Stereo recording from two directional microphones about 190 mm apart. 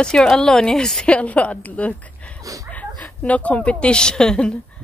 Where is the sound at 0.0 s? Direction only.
5° left (ahead or behind).